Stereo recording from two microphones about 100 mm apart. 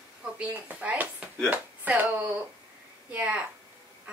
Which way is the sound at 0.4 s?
15° right (ahead or behind).